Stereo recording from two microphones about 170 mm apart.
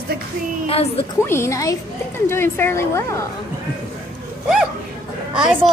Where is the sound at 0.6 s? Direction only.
35° left (ahead or behind).